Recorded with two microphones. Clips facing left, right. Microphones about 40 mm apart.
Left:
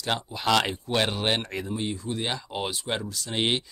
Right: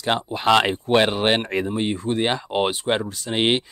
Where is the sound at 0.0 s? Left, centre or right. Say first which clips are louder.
Right 6 dB; right.